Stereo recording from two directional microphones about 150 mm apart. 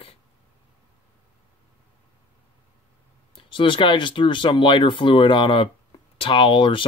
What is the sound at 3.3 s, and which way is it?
Speech, 35° left (ahead or behind).